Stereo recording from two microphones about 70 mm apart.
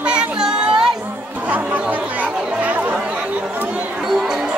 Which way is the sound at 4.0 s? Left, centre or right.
Centre.